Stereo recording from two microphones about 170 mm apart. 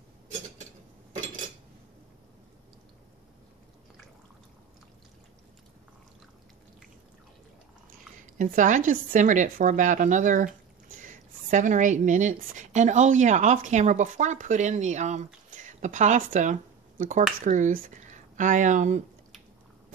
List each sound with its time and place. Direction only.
8.4 s speech: 50° right (ahead or behind)